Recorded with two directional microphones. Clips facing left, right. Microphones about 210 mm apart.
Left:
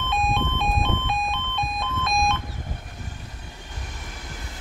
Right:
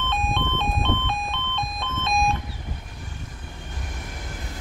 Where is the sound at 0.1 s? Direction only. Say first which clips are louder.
Left 3 dB; 10° left (ahead or behind).